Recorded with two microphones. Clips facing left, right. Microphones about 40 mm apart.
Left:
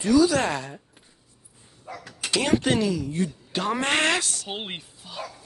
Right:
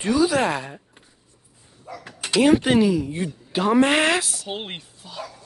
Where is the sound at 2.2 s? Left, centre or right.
Centre.